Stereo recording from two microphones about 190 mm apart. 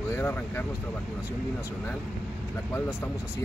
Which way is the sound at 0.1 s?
10° left (ahead or behind).